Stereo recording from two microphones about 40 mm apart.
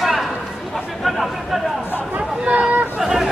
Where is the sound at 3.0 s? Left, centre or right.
Centre.